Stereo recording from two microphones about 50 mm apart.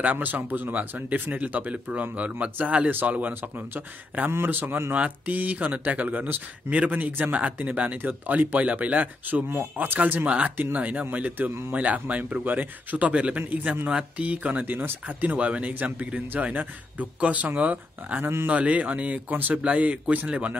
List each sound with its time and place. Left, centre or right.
0.0 s speech: right
4.3 s a man's voice: right
4.9 s speech: right
10.2 s speech: right
13.4 s speech: right
13.8 s speech: right
15.7 s speech: right